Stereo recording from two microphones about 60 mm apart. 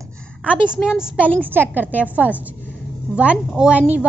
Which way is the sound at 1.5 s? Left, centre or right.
Right.